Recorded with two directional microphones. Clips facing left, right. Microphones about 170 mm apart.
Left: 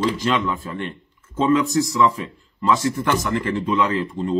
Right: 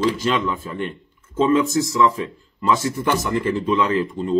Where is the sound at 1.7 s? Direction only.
Centre (ahead or behind).